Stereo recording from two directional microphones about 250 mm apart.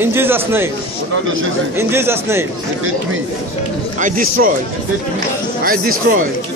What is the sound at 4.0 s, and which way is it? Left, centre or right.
Speech, right.